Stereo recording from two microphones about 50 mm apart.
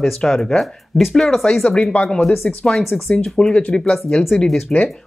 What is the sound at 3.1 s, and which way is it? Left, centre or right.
Speech, centre.